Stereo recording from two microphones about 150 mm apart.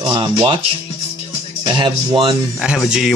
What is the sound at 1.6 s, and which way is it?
Speech, 35° right (ahead or behind).